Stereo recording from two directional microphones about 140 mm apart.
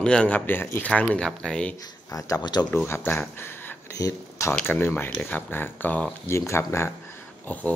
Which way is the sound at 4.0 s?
20° left (ahead or behind).